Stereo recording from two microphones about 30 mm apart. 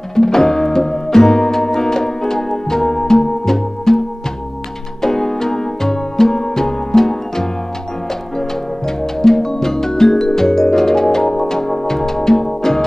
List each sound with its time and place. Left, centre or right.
0.1 s music: centre
5.0 s music: centre